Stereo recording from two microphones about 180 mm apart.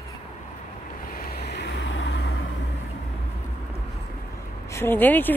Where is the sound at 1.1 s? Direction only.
55° left (ahead or behind); by 2.3 s 80° left.